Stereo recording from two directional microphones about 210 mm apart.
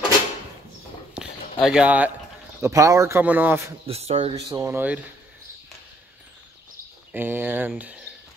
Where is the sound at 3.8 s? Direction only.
30° right (ahead or behind).